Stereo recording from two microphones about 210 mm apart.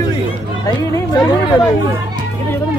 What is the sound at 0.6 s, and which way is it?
Chatter, 15° left (ahead or behind).